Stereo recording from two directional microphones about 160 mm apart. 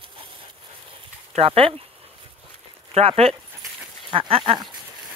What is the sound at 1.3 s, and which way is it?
Speech, 35° right (ahead or behind).